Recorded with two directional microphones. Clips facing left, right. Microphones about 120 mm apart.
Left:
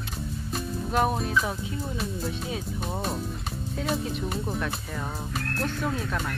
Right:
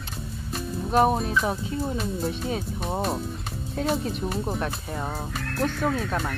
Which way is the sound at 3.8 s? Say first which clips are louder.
Right 3 dB; centre (ahead or behind).